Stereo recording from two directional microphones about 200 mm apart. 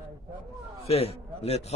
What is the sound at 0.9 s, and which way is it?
Speech, 30° left (ahead or behind).